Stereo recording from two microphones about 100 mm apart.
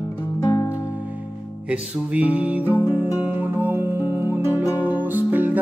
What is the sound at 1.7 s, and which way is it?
Music, 15° right (ahead or behind).